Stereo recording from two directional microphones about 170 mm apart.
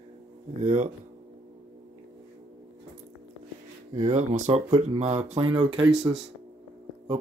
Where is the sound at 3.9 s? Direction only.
45° right (ahead or behind).